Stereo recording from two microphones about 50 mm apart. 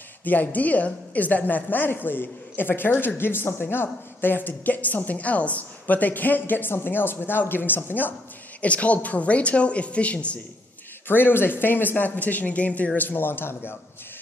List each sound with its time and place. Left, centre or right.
0.2 s speech: left
8.5 s speech: left
11.1 s speech: left